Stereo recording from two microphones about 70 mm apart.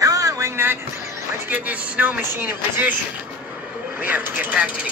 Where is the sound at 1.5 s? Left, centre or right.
Right.